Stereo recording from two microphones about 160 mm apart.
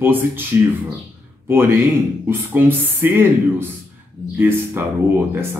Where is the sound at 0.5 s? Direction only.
15° right (ahead or behind).